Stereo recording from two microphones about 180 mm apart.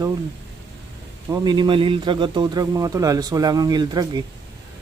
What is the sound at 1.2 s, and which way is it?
Speech, 20° right (ahead or behind).